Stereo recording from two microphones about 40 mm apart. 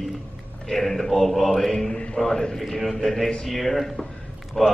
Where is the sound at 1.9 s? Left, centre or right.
Left.